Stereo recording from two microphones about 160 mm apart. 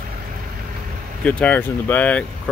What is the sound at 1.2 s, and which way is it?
Speech, 10° left (ahead or behind).